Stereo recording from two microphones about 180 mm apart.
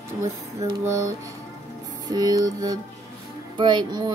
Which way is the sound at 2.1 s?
20° right (ahead or behind).